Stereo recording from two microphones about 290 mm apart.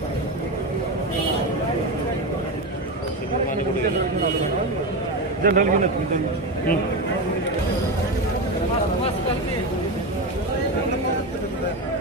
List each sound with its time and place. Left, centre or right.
5.4 s a man's voice: right